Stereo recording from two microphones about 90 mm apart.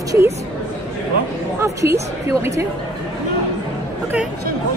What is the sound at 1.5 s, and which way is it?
A woman's voice, 30° right (ahead or behind).